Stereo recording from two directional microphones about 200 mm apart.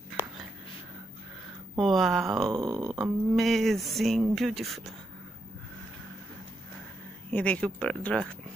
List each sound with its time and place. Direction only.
1.8 s speech: centre (ahead or behind)
2.5 s speech: 15° right (ahead or behind)
2.9 s speech: centre (ahead or behind)
7.2 s speech: 5° left (ahead or behind)